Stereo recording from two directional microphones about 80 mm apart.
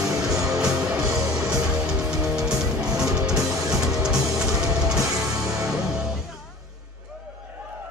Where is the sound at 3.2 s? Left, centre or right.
Centre.